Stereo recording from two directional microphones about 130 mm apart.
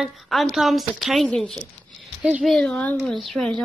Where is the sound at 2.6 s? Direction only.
10° left (ahead or behind).